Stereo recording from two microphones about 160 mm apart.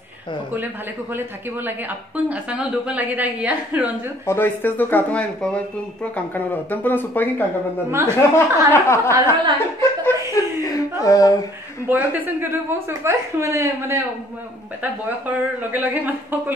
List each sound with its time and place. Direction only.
1.1 s speech: 10° right (ahead or behind)
4.3 s speech: 10° left (ahead or behind)
7.9 s speech: 15° right (ahead or behind)
8.7 s speech: 15° left (ahead or behind)
10.3 s a sound: 20° left (ahead or behind)
11.8 s speech: 10° right (ahead or behind)